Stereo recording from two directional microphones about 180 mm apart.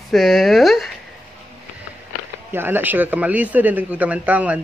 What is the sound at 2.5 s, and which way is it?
Speech, 10° right (ahead or behind).